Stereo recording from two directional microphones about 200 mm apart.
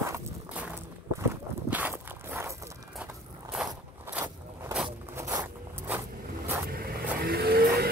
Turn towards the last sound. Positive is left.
turn(degrees=-50)  # may be behind; listen again after turning